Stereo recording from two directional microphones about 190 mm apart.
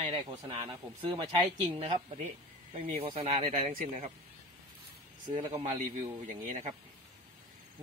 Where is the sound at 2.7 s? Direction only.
30° right (ahead or behind).